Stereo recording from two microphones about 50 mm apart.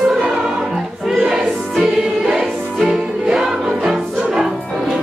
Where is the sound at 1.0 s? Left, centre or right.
Centre.